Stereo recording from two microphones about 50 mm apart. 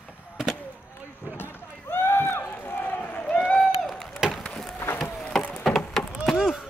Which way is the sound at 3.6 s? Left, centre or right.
Centre.